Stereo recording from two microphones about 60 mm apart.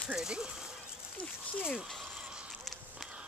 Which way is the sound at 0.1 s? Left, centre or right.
Centre.